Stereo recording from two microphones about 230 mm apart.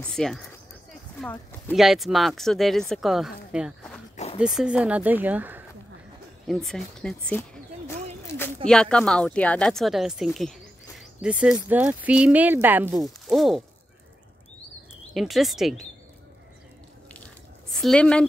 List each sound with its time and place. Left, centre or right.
0.0 s speech: centre
15.1 s speech: centre
17.7 s a woman's voice: centre